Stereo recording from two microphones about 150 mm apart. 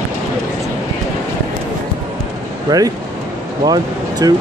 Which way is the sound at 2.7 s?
25° right (ahead or behind).